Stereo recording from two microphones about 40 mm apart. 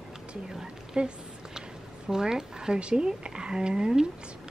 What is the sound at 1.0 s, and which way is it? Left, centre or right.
Speech, right.